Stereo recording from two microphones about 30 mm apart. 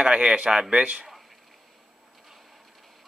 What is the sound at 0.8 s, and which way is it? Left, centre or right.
Speech, right.